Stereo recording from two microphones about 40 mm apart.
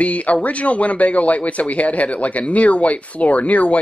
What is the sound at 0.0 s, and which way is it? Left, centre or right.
A man's voice, left.